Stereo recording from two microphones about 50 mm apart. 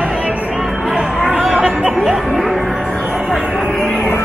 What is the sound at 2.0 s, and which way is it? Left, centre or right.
Music, centre.